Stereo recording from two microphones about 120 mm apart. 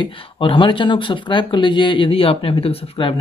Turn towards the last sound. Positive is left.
turn(degrees=50)  # may be behind; listen again after turning